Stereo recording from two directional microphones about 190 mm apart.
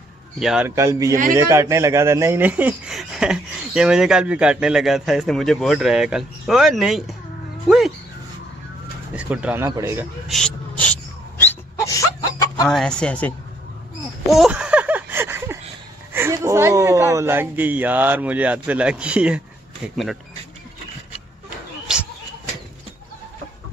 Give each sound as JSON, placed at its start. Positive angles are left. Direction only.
{"t": 0.4, "sound": "speech", "side_deg": -5}
{"t": 9.1, "sound": "speech", "side_deg": -5}
{"t": 10.2, "sound": "wail", "side_deg": 0}
{"t": 12.6, "sound": "speech", "side_deg": 5}
{"t": 14.3, "sound": "a sound", "side_deg": -5}
{"t": 16.1, "sound": "speech", "side_deg": -15}